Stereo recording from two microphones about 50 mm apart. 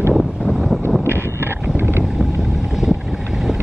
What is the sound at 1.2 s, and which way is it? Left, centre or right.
Boat, right.